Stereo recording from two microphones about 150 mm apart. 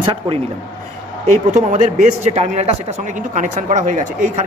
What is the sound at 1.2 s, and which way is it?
A man's voice, 50° right (ahead or behind).